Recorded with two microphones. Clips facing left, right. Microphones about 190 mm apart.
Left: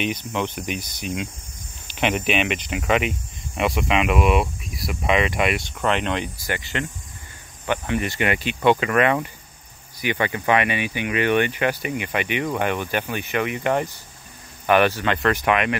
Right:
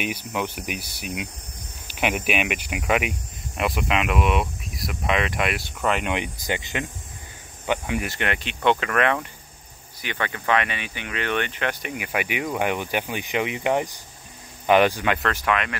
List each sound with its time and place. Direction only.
0.0 s speech: 10° right (ahead or behind)
6.1 s speech: 20° right (ahead or behind)
8.2 s speech: 5° left (ahead or behind)
12.0 s speech: 5° right (ahead or behind)
15.3 s speech: 20° left (ahead or behind)